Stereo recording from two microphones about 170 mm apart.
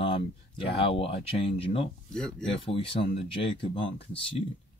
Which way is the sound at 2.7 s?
35° left (ahead or behind).